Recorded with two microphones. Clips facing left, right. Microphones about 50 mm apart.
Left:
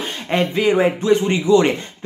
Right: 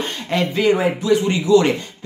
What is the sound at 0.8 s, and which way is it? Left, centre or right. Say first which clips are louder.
Speech: left 2 dB; left.